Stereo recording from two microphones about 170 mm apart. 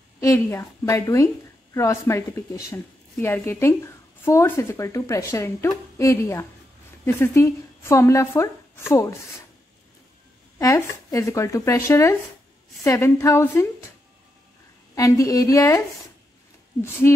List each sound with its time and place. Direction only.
0.2 s a woman's voice: 20° left (ahead or behind)
10.6 s a woman's voice: 20° left (ahead or behind)
15.0 s a woman's voice: 20° left (ahead or behind)
16.8 s a woman's voice: 15° left (ahead or behind)